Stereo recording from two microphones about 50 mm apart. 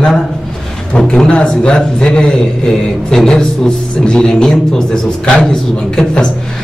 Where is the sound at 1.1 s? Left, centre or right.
Left.